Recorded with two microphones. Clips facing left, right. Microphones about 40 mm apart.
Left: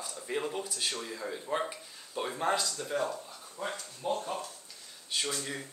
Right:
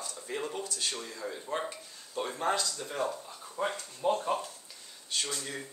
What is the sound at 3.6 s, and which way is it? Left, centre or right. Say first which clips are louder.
Speech: right 4 dB; centre.